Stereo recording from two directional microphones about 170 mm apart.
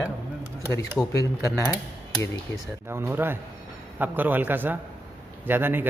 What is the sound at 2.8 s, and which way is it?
A man's voice, 15° right (ahead or behind).